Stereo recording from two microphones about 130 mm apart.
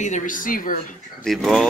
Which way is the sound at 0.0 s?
75° left (ahead or behind).